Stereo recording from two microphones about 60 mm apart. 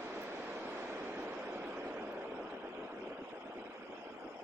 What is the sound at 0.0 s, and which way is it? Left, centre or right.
Vehicle, right.